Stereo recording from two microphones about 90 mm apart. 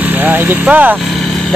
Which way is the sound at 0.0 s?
20° right (ahead or behind).